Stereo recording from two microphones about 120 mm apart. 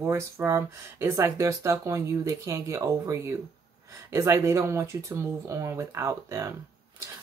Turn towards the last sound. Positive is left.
turn(degrees=-25)  # may be behind; listen again after turning